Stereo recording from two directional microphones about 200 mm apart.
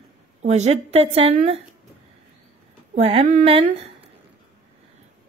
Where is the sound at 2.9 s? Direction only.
30° right (ahead or behind).